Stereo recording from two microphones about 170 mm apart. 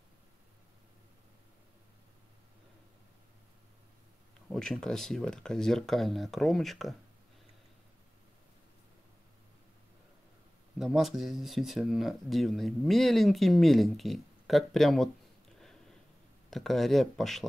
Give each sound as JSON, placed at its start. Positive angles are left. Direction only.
{"t": 4.5, "sound": "speech", "side_deg": 5}
{"t": 10.8, "sound": "speech", "side_deg": 0}
{"t": 16.4, "sound": "speech", "side_deg": 0}